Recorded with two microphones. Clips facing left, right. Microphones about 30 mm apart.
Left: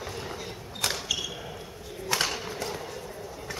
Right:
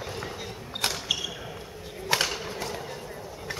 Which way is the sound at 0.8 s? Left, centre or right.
Right.